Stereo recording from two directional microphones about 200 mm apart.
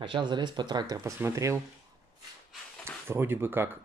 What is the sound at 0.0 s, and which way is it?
Speech, 25° right (ahead or behind).